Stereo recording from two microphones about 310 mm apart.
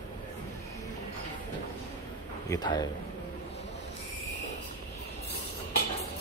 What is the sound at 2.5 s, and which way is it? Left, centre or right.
Speech, centre.